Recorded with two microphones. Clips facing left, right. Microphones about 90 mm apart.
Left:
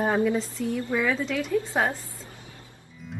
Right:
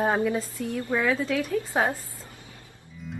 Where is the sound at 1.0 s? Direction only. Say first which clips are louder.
Right 1 dB; 5° right (ahead or behind).